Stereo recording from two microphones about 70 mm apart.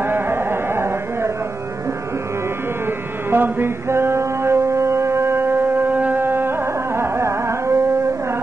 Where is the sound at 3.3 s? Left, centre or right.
Right.